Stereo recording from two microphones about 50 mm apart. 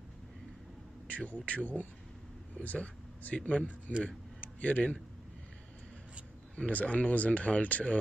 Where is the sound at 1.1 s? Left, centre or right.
Left.